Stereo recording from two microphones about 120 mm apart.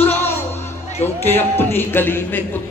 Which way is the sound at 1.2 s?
20° left (ahead or behind).